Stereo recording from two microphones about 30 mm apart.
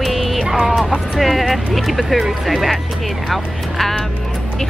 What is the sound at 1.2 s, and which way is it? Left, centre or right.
Speech, centre.